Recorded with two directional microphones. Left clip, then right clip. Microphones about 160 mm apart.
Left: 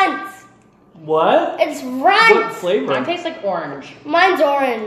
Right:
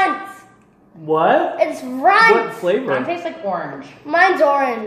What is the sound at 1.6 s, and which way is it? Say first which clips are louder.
Speech: even; 5° left (ahead or behind).